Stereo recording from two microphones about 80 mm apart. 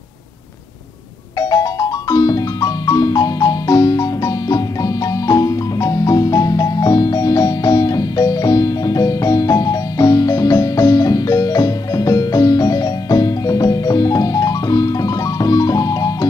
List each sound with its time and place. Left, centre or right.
1.4 s music: left